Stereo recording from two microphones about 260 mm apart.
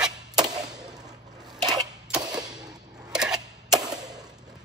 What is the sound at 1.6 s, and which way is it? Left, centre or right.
Sewing machine, centre.